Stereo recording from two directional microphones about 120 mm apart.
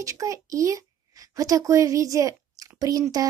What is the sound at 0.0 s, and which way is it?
A child's voice, 25° right (ahead or behind).